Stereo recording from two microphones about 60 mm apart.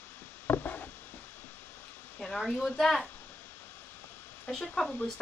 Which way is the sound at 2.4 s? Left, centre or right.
Centre.